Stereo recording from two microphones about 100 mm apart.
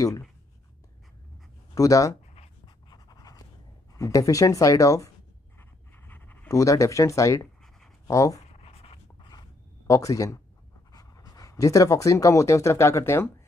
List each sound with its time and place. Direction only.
1.8 s speech: 35° left (ahead or behind)
2.6 s pant: 45° left (ahead or behind)
3.9 s speech: 35° left (ahead or behind)
5.6 s writing: 20° left (ahead or behind)
6.5 s speech: 30° left (ahead or behind)
8.5 s dog: 85° left
9.3 s a sound: 40° left (ahead or behind)
10.9 s speech: 40° left (ahead or behind)